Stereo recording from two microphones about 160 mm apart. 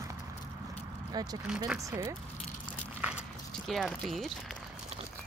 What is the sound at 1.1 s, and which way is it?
Speech, 25° right (ahead or behind).